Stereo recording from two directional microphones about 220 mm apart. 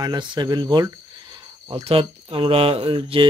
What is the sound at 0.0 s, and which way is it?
Speech, 20° right (ahead or behind).